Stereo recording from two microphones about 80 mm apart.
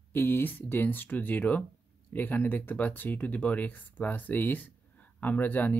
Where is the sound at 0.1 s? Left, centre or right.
Left.